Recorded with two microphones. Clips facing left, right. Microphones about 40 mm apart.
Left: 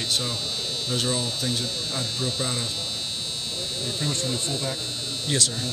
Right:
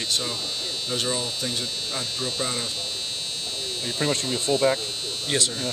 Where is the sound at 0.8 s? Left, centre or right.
Centre.